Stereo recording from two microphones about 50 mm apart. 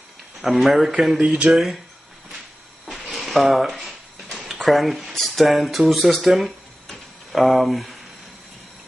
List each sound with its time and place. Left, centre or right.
0.4 s a man's voice: centre
1.2 s speech: centre
1.5 s a man's voice: centre
2.9 s a sound: centre
4.6 s a man's voice: centre